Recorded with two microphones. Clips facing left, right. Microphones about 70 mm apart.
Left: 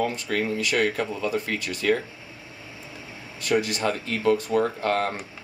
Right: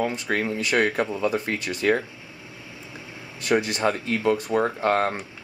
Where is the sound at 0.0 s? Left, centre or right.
Centre.